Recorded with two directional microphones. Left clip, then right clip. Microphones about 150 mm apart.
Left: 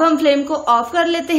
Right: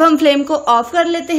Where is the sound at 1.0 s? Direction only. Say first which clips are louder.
Right 2 dB; 10° right (ahead or behind).